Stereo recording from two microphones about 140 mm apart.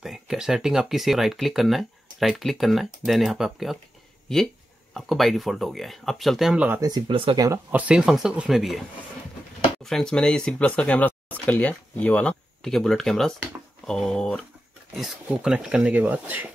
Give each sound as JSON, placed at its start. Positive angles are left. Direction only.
{"t": 0.0, "sound": "speech", "side_deg": 0}
{"t": 6.8, "sound": "speech", "side_deg": -30}
{"t": 7.7, "sound": "speech", "side_deg": -10}
{"t": 9.8, "sound": "speech", "side_deg": 5}
{"t": 15.0, "sound": "speech", "side_deg": -5}